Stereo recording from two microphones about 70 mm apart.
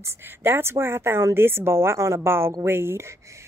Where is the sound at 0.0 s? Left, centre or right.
Right.